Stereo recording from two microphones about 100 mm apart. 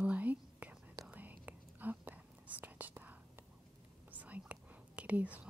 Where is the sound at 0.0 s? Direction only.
15° right (ahead or behind).